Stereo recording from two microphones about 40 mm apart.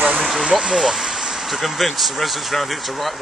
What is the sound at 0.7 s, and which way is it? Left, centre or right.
Vehicle, centre.